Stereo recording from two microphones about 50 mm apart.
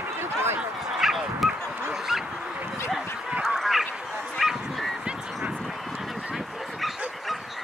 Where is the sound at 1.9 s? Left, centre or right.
Centre.